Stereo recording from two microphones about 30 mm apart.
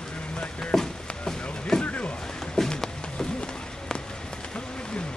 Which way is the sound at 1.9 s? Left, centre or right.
Left.